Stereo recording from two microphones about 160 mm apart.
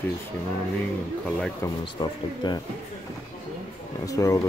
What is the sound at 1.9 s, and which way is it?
Speech, 25° left (ahead or behind).